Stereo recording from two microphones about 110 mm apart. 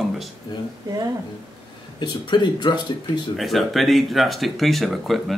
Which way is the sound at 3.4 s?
Centre (ahead or behind).